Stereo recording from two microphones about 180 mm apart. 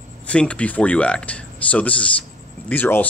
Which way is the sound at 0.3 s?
5° left (ahead or behind).